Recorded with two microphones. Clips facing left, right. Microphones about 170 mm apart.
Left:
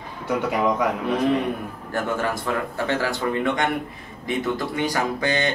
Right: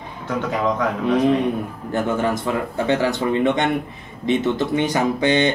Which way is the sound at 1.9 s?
20° right (ahead or behind).